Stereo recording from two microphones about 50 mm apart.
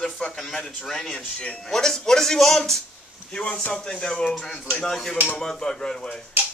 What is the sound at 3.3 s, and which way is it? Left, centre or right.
A man's voice, left.